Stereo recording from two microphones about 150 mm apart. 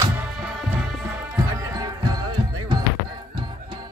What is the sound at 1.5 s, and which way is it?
Music, 25° right (ahead or behind).